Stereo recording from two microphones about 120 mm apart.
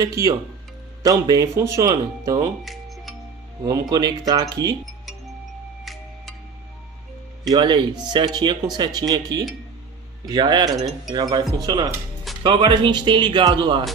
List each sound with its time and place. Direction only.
0.0 s speech: 30° right (ahead or behind)
3.9 s speech: 30° right (ahead or behind)
7.4 s speech: 35° right (ahead or behind)
12.4 s speech: 45° right (ahead or behind)